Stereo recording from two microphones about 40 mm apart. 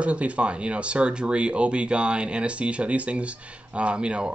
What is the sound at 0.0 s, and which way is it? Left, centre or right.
Speech, right.